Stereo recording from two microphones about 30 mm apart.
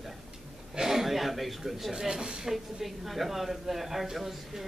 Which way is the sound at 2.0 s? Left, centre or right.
Right.